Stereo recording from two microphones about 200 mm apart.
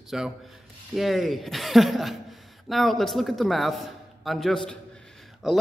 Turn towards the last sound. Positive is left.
turn(degrees=0)  # may be behind; listen again after turning